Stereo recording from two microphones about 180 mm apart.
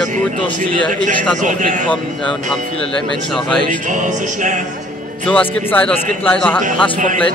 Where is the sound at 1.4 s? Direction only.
45° right (ahead or behind).